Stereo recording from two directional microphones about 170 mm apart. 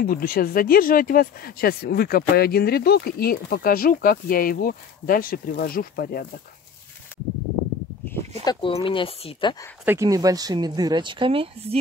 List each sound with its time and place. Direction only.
0.0 s speech: 60° left (ahead or behind)
8.5 s speech: 25° left (ahead or behind)
9.8 s speech: 20° right (ahead or behind); by 11.8 s 35° right (ahead or behind)